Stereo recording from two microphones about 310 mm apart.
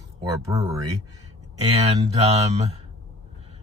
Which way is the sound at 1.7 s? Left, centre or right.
Centre.